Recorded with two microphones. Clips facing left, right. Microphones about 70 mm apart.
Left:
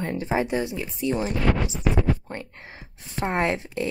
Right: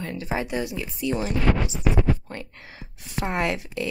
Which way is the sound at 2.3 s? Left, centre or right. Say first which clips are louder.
Left 1 dB; left.